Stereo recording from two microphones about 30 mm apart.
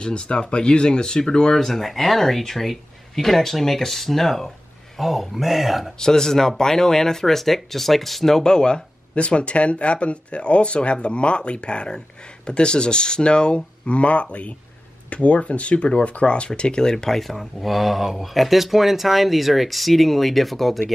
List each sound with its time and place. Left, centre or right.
0.0 s speech: left
1.7 s speech: centre
4.9 s speech: centre
5.9 s speech: centre
8.4 s speech: left
9.1 s speech: left
13.8 s speech: left
17.1 s speech: centre